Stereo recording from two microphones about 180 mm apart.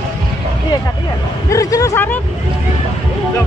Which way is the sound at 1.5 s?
20° left (ahead or behind).